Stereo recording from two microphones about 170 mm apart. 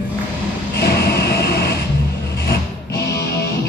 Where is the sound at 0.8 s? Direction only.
70° left (ahead or behind).